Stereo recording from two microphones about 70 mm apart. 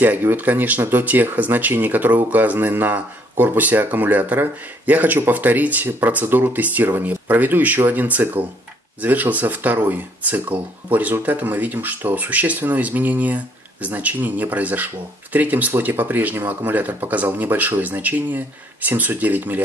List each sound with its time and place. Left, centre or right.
0.0 s speech: right